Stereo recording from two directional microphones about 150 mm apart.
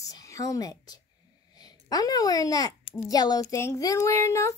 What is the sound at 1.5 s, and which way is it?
Speech, 25° left (ahead or behind).